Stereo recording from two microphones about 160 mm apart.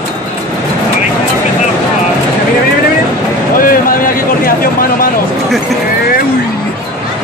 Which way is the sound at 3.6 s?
60° left (ahead or behind).